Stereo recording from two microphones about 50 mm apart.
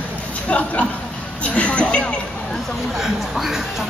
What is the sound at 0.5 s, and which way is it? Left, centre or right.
A man's voice, left.